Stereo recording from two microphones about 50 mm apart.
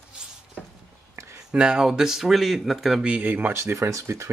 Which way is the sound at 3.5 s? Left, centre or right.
Right.